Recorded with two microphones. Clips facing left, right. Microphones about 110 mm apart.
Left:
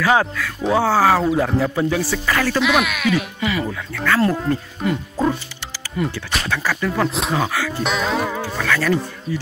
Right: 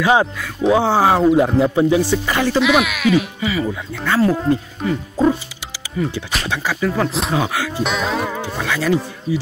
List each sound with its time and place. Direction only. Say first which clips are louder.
0.0 s speech: right 2 dB; 20° right (ahead or behind)
2.6 s speech: right 3 dB; centre (ahead or behind)
3.9 s speech: left 2 dB; 20° right (ahead or behind)
4.8 s speech: right 3 dB; 5° left (ahead or behind)
6.1 s speech: right 1 dB; 15° right (ahead or behind)
7.0 s speech: right 1 dB; centre (ahead or behind)
7.3 s speech: right 2 dB; 15° right (ahead or behind)
7.8 s speech: even; centre (ahead or behind)
8.5 s speech: right 1 dB; 15° right (ahead or behind)